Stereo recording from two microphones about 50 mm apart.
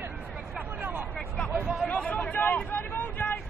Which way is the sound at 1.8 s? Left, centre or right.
Left.